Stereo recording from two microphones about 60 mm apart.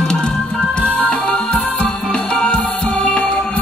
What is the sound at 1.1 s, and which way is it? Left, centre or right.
Music, centre.